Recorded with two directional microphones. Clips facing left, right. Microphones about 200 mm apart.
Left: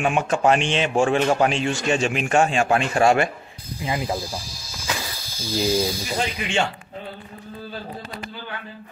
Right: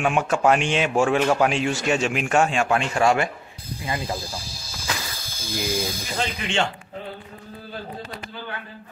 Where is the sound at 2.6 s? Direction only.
35° left (ahead or behind).